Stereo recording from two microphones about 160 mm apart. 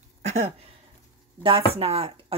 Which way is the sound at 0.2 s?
45° right (ahead or behind).